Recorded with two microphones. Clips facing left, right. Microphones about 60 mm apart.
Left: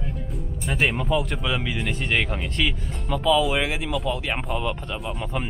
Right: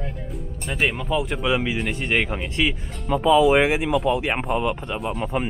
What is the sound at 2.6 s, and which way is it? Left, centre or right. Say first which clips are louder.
Speech: right 3 dB; right.